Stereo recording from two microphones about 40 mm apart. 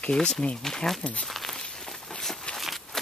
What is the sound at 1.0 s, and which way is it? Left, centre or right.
Speech, left.